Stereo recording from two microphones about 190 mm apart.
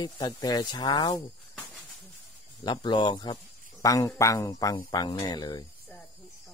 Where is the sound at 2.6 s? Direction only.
25° left (ahead or behind).